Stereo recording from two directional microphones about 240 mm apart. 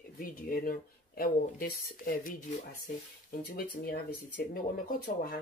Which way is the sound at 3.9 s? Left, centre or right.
Left.